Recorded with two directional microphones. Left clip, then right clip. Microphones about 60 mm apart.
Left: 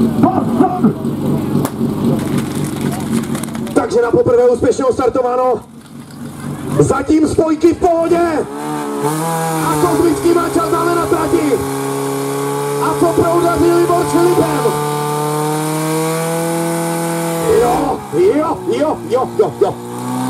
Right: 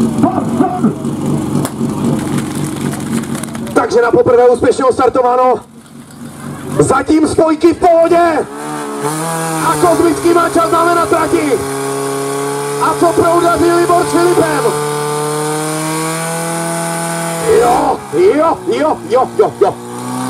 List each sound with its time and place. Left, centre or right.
0.2 s vehicle: centre
2.1 s vehicle: centre
3.7 s a sound: right
4.3 s speech: right
6.9 s speech: right
9.0 s speech: centre
10.3 s music: centre
11.4 s chainsaw: centre
17.8 s speech: right